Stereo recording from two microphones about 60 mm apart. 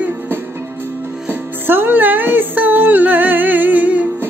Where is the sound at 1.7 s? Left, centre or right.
Right.